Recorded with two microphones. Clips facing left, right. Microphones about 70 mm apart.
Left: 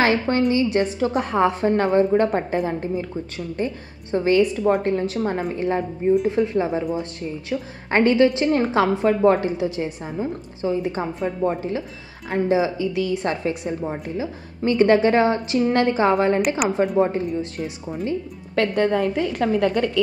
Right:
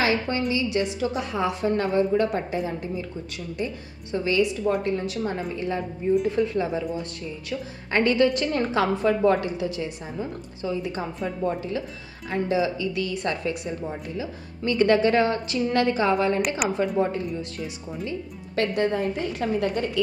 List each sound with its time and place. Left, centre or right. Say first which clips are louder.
0.0 s a woman's voice: left 5 dB; left
6.3 s a woman's voice: left 3 dB; left
9.0 s a woman's voice: left 3 dB; left
16.6 s a woman's voice: left 4 dB; centre
18.0 s speech: left 7 dB; left